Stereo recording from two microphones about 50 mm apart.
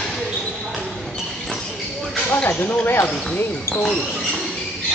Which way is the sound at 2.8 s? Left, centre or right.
Left.